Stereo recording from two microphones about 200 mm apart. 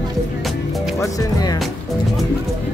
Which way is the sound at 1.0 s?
20° left (ahead or behind).